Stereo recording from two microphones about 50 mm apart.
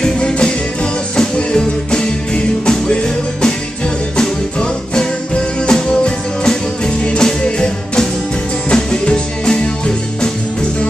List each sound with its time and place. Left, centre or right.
0.0 s music: centre
4.2 s music: centre